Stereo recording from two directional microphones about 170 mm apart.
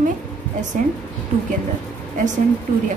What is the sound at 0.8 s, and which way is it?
Speech, 50° right (ahead or behind).